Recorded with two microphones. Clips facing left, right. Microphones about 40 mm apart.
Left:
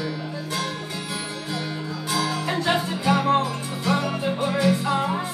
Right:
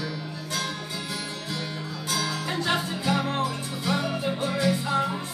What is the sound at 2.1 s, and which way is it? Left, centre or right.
Music, centre.